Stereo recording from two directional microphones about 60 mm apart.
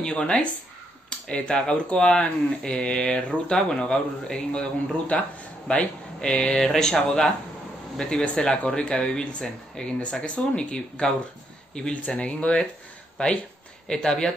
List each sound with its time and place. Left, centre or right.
0.0 s speech: centre
5.7 s speech: centre
13.8 s speech: centre